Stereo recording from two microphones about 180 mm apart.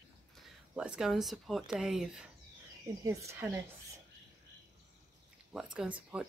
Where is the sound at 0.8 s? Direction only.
5° right (ahead or behind).